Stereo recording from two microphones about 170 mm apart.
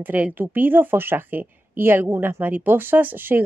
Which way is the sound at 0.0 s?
10° right (ahead or behind).